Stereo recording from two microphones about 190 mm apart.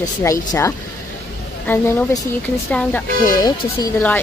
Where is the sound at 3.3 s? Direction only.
20° left (ahead or behind).